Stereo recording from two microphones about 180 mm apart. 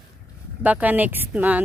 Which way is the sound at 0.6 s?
10° right (ahead or behind).